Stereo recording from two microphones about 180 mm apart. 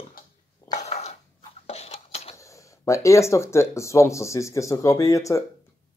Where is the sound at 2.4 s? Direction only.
15° left (ahead or behind).